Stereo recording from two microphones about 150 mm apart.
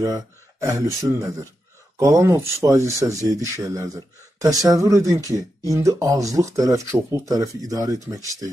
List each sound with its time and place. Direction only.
0.0 s speech: 25° right (ahead or behind)